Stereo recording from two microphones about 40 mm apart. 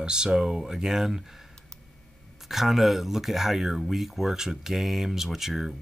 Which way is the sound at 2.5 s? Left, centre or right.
Centre.